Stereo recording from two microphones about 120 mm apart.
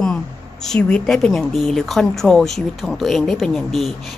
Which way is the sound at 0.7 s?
5° left (ahead or behind).